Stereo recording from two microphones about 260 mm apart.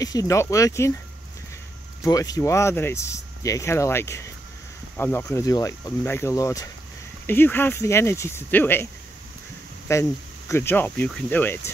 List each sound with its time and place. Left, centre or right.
0.0 s speech: centre
2.0 s speech: centre
9.9 s speech: centre